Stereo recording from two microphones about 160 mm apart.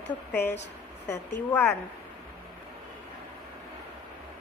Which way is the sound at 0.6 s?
90° left.